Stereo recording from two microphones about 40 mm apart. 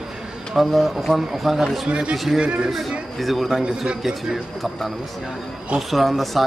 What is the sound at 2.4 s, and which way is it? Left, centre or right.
Speech, right.